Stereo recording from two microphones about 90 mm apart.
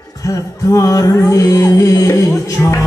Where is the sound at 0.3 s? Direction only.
35° left (ahead or behind).